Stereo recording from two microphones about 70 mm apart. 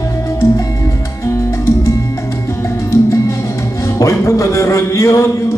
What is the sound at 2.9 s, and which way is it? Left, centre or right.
Music, left.